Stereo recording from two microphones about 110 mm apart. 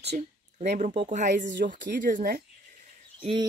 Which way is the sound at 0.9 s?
60° right (ahead or behind).